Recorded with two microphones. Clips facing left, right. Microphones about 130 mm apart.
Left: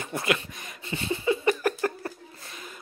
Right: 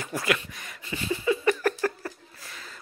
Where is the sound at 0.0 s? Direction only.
25° left (ahead or behind).